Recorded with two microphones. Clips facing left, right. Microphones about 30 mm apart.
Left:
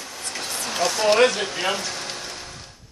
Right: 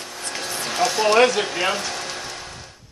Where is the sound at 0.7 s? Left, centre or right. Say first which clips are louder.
Right 3 dB; centre.